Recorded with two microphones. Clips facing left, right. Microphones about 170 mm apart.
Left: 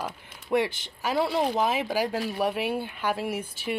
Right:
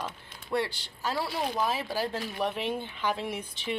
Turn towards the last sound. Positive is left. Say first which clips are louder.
# left 4 dB
turn(degrees=5)  # may be behind; listen again after turning